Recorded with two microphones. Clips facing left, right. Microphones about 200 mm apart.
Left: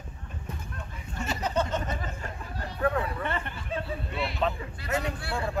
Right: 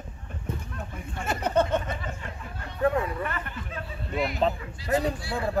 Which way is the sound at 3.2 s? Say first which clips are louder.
Even; 30° left (ahead or behind).